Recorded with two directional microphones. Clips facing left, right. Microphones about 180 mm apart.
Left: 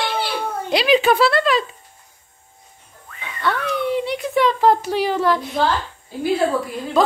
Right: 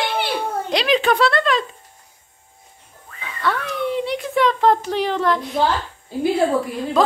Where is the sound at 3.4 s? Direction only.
Centre (ahead or behind).